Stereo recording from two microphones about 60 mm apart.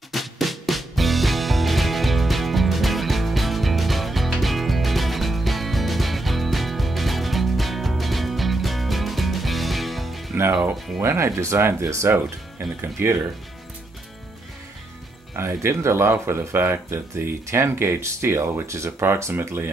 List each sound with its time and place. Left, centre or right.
0.1 s music: centre
11.0 s speech: right
15.3 s speech: right